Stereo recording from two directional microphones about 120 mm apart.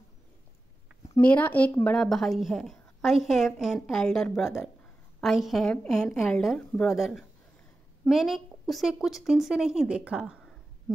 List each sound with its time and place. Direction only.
1.2 s speech: 15° left (ahead or behind)
2.0 s a woman's voice: 5° left (ahead or behind)